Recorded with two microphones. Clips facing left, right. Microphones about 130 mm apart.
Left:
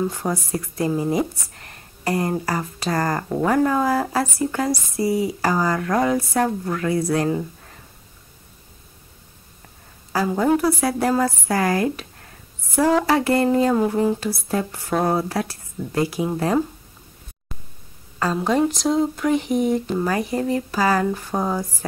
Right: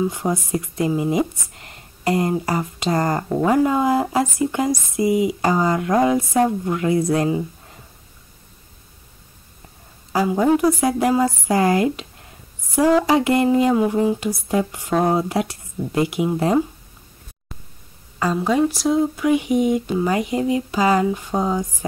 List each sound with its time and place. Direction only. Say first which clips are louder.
0.0 s speech: right 2 dB; 15° right (ahead or behind)
10.1 s speech: right 2 dB; 15° right (ahead or behind)
18.3 s speech: right 1 dB; 5° right (ahead or behind)